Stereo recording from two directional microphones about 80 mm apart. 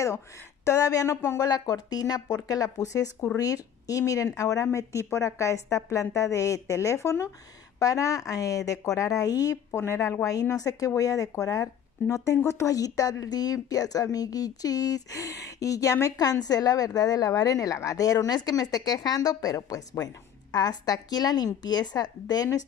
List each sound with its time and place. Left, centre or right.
0.7 s speech: left
1.4 s speech: left
9.8 s speech: left